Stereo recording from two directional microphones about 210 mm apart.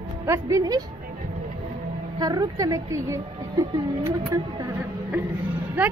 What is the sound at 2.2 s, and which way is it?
A woman's voice, 20° right (ahead or behind).